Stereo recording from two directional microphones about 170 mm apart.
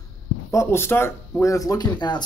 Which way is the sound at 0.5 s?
15° left (ahead or behind).